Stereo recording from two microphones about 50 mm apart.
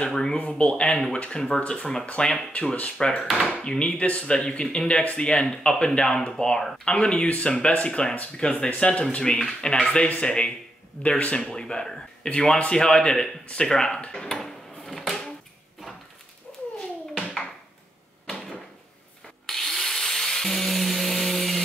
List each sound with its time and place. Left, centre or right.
0.1 s speech: centre
0.4 s speech: left
0.9 s speech: centre
1.6 s speech: left
3.2 s speech: centre
3.6 s speech: centre
14.9 s drawer open or close: centre
18.2 s a sound: centre